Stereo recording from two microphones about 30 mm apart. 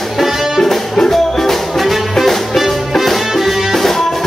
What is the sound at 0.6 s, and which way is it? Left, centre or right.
Music, centre.